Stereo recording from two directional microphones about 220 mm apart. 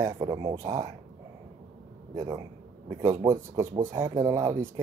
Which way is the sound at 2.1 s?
15° right (ahead or behind).